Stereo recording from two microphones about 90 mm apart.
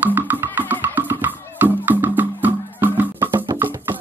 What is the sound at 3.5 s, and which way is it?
Music, 55° right (ahead or behind).